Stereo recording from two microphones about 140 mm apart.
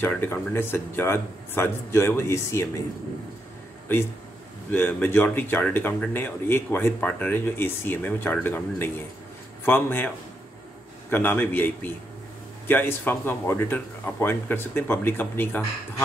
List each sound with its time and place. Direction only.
0.0 s speech: 15° left (ahead or behind)
4.6 s speech: 15° left (ahead or behind)